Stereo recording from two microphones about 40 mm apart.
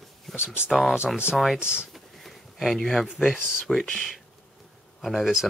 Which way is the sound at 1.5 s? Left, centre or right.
Right.